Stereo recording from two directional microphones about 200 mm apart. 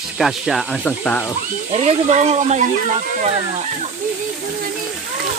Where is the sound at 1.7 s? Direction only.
30° right (ahead or behind).